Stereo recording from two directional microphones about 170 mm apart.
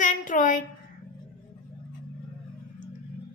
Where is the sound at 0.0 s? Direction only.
50° left (ahead or behind).